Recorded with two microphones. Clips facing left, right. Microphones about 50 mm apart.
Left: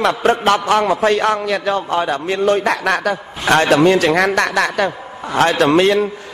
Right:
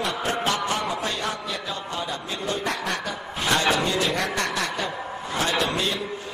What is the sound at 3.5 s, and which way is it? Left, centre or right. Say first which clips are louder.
A man's voice: left 11 dB; left.